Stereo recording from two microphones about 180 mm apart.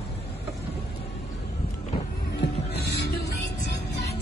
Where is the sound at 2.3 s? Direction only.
65° left (ahead or behind).